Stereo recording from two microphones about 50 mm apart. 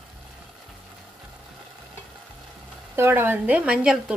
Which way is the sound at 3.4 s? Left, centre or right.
Right.